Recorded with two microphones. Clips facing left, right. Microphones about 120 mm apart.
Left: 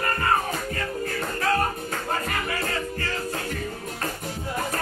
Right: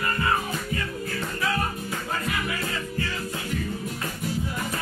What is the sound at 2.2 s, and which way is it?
Music, 45° left (ahead or behind).